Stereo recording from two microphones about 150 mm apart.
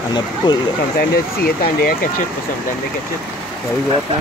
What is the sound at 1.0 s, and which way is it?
Speech, 85° left.